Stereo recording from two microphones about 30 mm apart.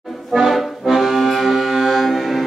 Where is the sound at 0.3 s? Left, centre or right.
Centre.